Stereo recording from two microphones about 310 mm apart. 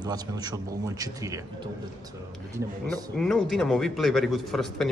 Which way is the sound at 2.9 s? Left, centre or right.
Centre.